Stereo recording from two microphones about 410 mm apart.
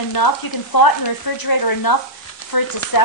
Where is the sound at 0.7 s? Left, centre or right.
Left.